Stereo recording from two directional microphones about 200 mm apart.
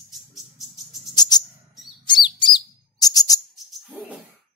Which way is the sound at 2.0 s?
25° left (ahead or behind).